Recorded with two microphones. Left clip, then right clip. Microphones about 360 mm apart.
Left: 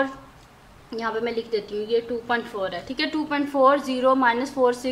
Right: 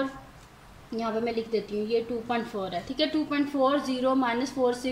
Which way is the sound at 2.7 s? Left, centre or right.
Left.